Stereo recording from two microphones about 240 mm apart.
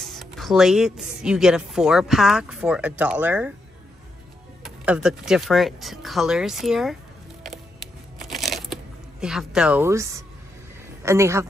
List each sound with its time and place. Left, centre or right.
0.0 s speech: centre
4.6 s speech: centre
8.2 s a sound: centre
9.2 s a man's voice: centre